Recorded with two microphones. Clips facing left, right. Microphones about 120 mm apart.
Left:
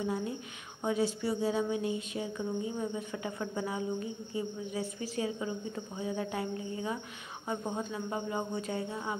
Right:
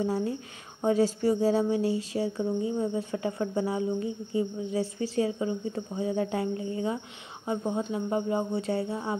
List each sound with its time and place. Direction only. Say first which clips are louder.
0.0 s a woman's voice: right 5 dB; 40° right (ahead or behind)